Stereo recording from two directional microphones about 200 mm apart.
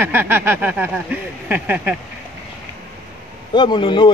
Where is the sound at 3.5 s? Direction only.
25° left (ahead or behind).